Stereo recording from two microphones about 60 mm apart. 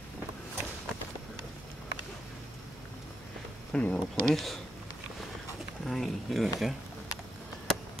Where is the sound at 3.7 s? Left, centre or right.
Left.